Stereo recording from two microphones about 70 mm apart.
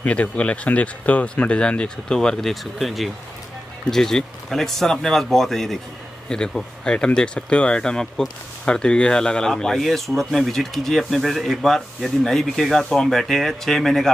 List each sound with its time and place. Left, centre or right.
0.0 s speech: centre